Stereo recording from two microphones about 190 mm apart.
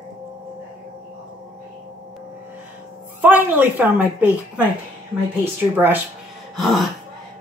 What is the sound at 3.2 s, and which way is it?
A woman's voice, 10° right (ahead or behind).